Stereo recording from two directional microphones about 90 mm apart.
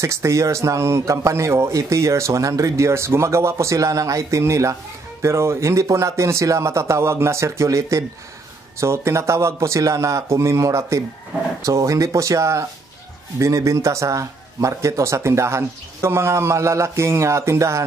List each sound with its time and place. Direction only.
0.0 s speech: 35° right (ahead or behind)